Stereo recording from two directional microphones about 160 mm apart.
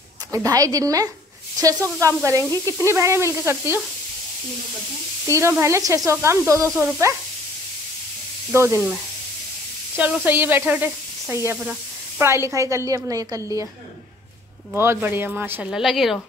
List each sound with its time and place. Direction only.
0.3 s a woman's voice: 20° right (ahead or behind)
5.2 s speech: 15° right (ahead or behind)
8.5 s speech: 15° right (ahead or behind)
9.9 s a woman's voice: 10° right (ahead or behind)
14.8 s speech: 15° right (ahead or behind)